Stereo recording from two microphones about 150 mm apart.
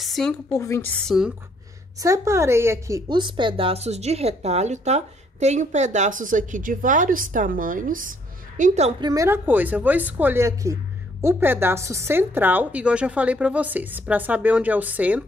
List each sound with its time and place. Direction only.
0.0 s a sound: centre (ahead or behind)
0.5 s a woman's voice: 20° left (ahead or behind)
0.9 s speech: centre (ahead or behind)
2.0 s a woman's voice: 20° right (ahead or behind)
3.1 s a woman's voice: 30° right (ahead or behind); by 8.9 s 50° right (ahead or behind)
9.0 s a woman's voice: 20° right (ahead or behind)